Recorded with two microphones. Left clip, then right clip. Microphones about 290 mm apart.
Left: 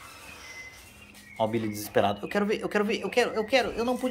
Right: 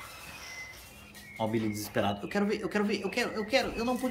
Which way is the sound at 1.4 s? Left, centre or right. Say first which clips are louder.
Left 4 dB; centre.